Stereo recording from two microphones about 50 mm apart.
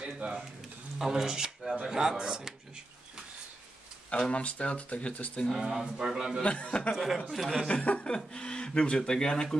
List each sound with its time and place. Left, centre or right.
0.0 s a sound: right
0.9 s speech: centre
4.2 s speech: left
5.6 s speech: centre
6.4 s speech: left
7.2 s speech: centre
7.6 s speech: left